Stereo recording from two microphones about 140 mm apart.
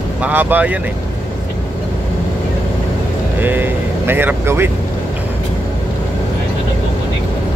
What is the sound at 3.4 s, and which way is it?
Speech, 15° right (ahead or behind).